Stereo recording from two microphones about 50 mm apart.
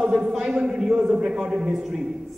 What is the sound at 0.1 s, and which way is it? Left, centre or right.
A man's voice, centre.